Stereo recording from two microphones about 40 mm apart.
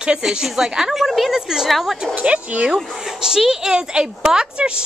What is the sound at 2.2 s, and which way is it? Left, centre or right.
Speech, right.